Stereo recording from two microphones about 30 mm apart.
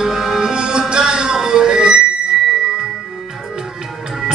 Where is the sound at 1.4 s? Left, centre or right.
Right.